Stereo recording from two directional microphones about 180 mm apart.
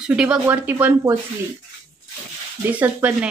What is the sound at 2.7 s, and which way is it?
Speech, 10° right (ahead or behind).